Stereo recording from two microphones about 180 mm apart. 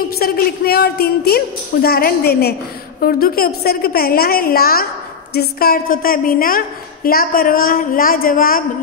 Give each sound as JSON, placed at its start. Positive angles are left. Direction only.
{"t": 0.2, "sound": "a woman's voice", "side_deg": 60}